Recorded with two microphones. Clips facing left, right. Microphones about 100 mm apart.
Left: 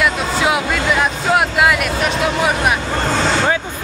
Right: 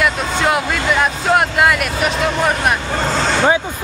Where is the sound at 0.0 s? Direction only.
Centre (ahead or behind).